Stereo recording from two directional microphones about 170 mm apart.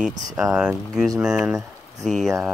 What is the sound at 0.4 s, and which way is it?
Speech, centre (ahead or behind).